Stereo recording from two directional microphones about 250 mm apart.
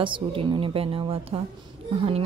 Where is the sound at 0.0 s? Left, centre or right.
Centre.